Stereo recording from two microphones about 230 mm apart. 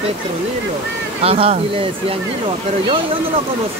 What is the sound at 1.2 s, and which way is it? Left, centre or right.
Speech, right.